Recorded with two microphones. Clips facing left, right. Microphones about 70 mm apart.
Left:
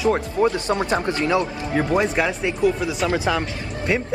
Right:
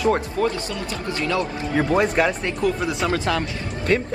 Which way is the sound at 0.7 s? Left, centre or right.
Left.